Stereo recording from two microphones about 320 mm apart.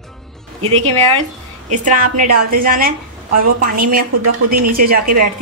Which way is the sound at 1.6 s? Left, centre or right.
Right.